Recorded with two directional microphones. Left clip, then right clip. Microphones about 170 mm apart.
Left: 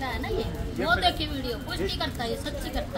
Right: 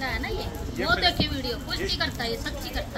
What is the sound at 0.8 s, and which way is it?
Speech, 90° left.